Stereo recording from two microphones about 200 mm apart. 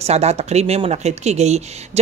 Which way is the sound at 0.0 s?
30° right (ahead or behind).